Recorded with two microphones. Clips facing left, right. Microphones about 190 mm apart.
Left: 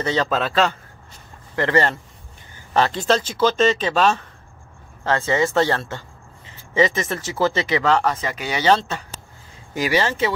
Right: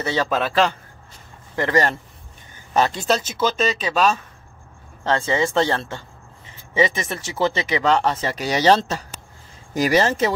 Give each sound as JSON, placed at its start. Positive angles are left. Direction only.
{"t": 0.0, "sound": "speech", "side_deg": -10}